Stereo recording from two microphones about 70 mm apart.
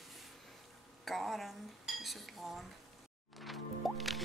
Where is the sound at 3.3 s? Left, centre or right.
Centre.